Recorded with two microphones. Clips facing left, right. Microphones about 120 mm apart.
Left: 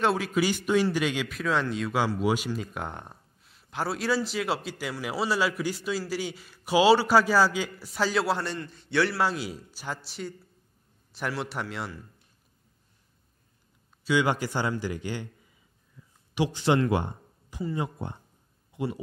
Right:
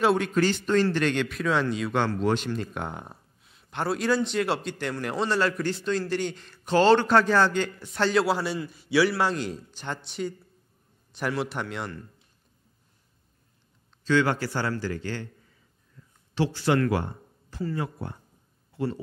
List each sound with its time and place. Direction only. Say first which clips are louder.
0.0 s a man's voice: right 3 dB; centre (ahead or behind)
14.0 s a man's voice: right 2 dB; 15° left (ahead or behind)
18.7 s a sound: right 2 dB; 15° left (ahead or behind)